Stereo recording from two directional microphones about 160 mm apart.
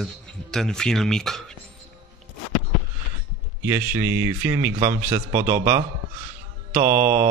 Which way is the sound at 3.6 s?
15° right (ahead or behind).